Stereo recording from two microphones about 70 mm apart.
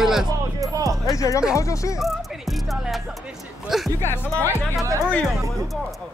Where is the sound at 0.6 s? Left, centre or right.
Right.